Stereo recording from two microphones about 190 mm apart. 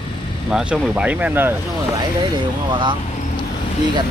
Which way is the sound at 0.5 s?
5° right (ahead or behind).